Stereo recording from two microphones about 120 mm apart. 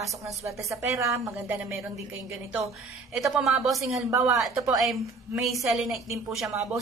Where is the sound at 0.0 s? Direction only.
25° right (ahead or behind).